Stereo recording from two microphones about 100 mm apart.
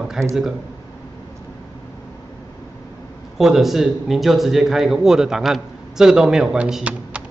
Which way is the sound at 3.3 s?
5° right (ahead or behind).